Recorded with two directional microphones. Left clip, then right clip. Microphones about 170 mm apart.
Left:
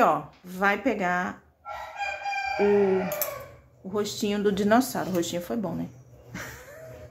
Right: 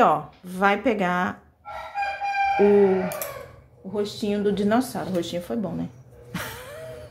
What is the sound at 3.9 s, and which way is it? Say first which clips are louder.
Speech: right 2 dB; 20° left (ahead or behind).